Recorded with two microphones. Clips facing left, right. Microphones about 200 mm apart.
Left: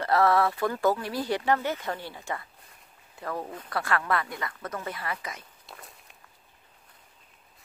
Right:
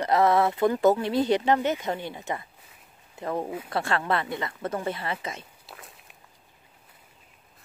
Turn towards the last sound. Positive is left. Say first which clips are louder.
# right 1 dB
turn(degrees=0)  # may be behind; listen again after turning